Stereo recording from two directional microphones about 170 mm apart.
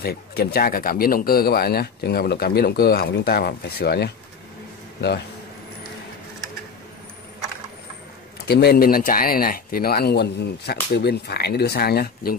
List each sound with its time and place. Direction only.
0.0 s speech: 65° left (ahead or behind)
8.5 s speech: 70° left (ahead or behind)